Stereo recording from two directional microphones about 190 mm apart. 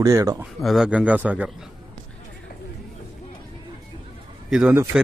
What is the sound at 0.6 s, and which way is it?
Speech, centre (ahead or behind).